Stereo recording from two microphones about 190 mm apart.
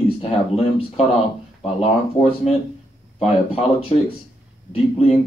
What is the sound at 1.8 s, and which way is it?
Speech, 35° left (ahead or behind).